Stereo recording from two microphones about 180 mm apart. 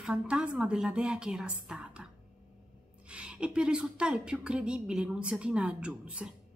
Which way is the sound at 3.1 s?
5° right (ahead or behind).